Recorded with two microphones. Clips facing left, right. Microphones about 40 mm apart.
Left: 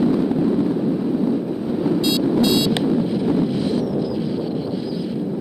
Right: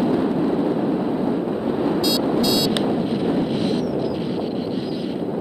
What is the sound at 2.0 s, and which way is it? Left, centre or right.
Vehicle, left.